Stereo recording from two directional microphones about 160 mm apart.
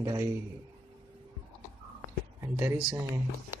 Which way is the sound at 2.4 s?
15° right (ahead or behind).